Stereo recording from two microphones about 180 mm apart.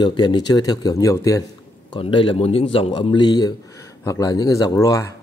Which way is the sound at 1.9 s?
30° left (ahead or behind).